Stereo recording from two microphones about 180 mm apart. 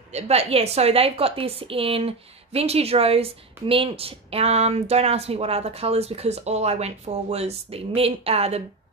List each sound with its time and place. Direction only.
0.1 s a woman's voice: 35° right (ahead or behind)